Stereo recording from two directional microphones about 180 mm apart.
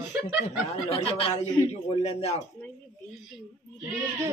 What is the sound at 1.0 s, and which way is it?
Speech, 30° left (ahead or behind).